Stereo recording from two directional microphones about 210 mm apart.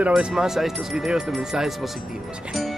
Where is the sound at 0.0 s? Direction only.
Centre (ahead or behind).